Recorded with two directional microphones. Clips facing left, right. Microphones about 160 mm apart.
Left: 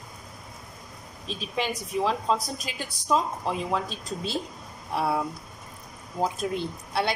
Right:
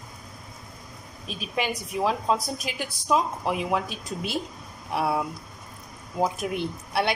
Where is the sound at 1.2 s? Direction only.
10° right (ahead or behind).